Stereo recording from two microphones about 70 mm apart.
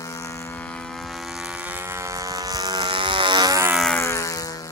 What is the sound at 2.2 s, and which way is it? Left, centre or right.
Vehicle, right.